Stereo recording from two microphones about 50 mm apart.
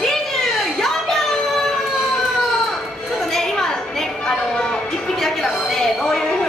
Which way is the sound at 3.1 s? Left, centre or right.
Centre.